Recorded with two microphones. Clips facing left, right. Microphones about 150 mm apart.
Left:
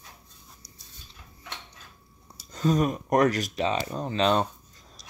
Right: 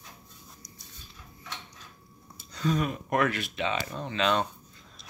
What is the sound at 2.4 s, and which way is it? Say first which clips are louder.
Speech: left 4 dB; 40° left (ahead or behind).